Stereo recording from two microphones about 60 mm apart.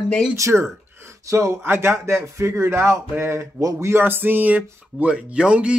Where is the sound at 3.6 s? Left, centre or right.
Right.